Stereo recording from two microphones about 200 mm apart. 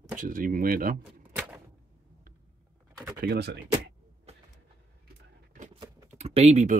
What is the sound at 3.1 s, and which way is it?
Speech, 55° right (ahead or behind).